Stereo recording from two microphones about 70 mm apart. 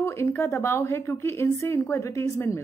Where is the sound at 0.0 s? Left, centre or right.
Left.